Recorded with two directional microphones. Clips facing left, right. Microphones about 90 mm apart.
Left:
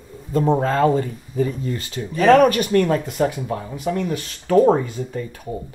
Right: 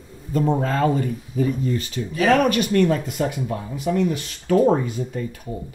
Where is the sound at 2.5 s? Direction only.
40° left (ahead or behind).